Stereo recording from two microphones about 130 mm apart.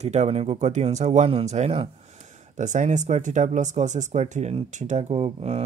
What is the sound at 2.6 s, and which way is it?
Speech, 70° right (ahead or behind).